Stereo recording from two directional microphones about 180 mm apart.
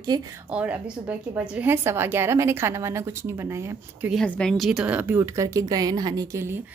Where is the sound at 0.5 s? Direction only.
10° right (ahead or behind).